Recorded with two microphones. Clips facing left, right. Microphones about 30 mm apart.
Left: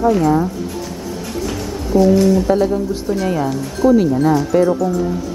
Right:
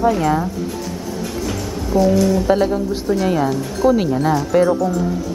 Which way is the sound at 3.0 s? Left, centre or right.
Centre.